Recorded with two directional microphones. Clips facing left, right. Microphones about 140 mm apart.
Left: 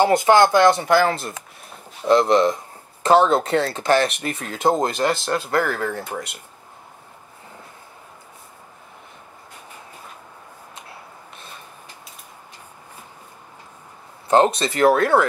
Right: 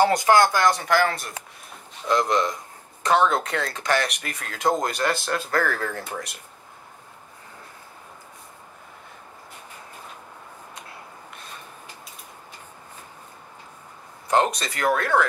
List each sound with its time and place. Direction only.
0.0 s speech: 25° left (ahead or behind)
14.2 s speech: 30° left (ahead or behind)